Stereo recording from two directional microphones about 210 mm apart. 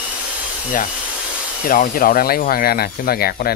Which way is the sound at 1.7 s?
40° left (ahead or behind).